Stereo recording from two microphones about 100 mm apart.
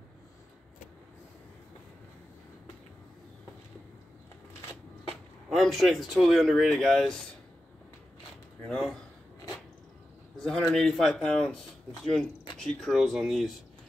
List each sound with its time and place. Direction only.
4.6 s shuffling cards: 25° left (ahead or behind)
5.5 s speech: centre (ahead or behind)
8.6 s speech: 10° left (ahead or behind)
10.4 s speech: 5° left (ahead or behind)